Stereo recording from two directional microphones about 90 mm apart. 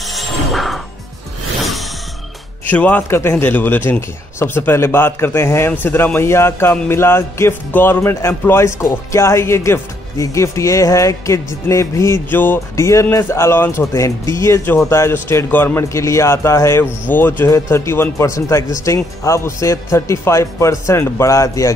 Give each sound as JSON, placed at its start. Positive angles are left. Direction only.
{"t": 0.0, "sound": "music", "side_deg": 0}
{"t": 1.6, "sound": "a sound", "side_deg": 0}
{"t": 2.7, "sound": "a man's voice", "side_deg": 20}
{"t": 12.3, "sound": "a man's voice", "side_deg": 20}
{"t": 12.8, "sound": "speech", "side_deg": 35}
{"t": 17.1, "sound": "a man's voice", "side_deg": 20}